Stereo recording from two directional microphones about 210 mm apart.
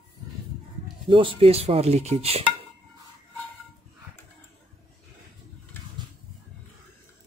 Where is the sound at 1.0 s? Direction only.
25° right (ahead or behind).